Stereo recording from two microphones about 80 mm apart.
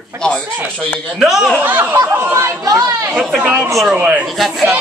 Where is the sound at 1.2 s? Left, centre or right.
Centre.